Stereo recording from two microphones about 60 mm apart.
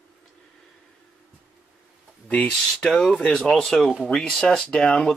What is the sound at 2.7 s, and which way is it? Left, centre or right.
Speech, centre.